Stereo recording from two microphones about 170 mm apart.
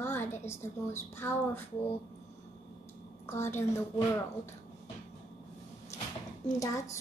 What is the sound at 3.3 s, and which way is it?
Speech, 15° left (ahead or behind).